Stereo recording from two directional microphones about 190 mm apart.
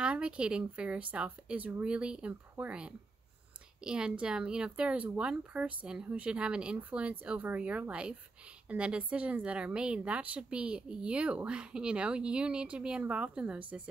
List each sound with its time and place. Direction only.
0.0 s a woman's voice: 5° right (ahead or behind)